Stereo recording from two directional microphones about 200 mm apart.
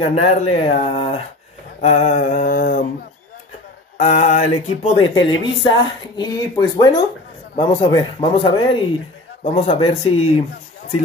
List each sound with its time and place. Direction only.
0.0 s speech: 30° left (ahead or behind)
1.8 s mantra: 35° left (ahead or behind)
4.0 s mantra: 35° left (ahead or behind)
4.9 s speech: 25° left (ahead or behind)